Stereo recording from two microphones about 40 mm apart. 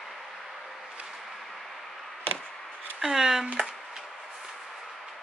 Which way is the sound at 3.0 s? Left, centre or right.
Centre.